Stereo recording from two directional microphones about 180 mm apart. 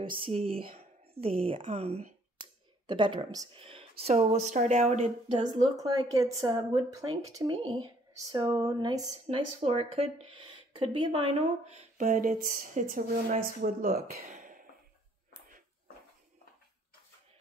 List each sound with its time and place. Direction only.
0.0 s speech: 30° right (ahead or behind)
5.4 s speech: 20° right (ahead or behind)
9.6 s speech: 35° right (ahead or behind)
11.6 s speech: 40° right (ahead or behind); by 14.2 s 55° right (ahead or behind)
14.2 s a sound: 45° right (ahead or behind)